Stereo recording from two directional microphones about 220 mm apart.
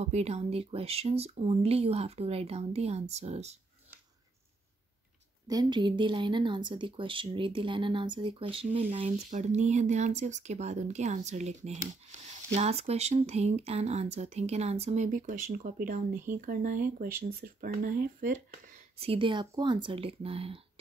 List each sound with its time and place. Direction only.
0.0 s speech: 30° right (ahead or behind)
5.5 s speech: 20° right (ahead or behind); by 18.3 s 40° right (ahead or behind)
18.9 s speech: 25° right (ahead or behind)